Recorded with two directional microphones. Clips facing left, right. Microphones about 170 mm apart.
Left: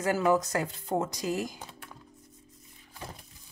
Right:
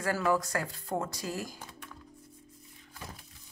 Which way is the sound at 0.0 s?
20° left (ahead or behind).